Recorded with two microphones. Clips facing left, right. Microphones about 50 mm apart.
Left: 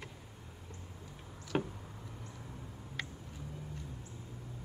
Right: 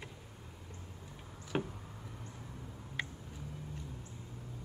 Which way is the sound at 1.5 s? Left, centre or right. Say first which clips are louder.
Left 2 dB; centre.